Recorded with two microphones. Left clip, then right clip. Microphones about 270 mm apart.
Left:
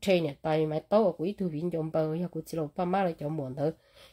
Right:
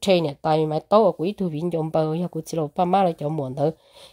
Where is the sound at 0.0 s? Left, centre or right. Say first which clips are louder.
Right 7 dB; right.